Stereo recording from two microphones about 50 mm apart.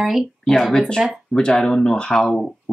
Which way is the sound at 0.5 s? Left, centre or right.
Centre.